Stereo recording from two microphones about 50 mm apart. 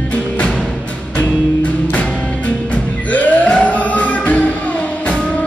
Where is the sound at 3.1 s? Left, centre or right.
Left.